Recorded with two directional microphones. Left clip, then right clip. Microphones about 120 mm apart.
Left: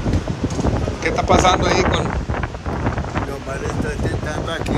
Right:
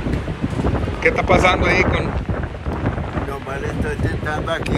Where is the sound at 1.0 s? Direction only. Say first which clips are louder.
Right 1 dB; 10° left (ahead or behind).